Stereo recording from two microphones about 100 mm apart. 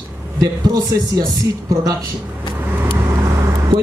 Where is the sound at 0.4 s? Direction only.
40° right (ahead or behind).